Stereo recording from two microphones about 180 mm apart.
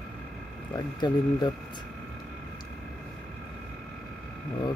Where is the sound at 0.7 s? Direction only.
25° left (ahead or behind).